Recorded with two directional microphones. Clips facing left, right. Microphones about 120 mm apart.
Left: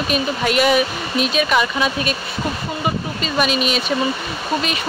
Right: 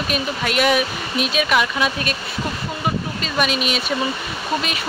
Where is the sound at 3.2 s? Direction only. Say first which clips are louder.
Left 3 dB; centre (ahead or behind).